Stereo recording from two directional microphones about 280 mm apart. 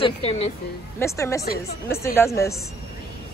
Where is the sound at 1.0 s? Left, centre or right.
Centre.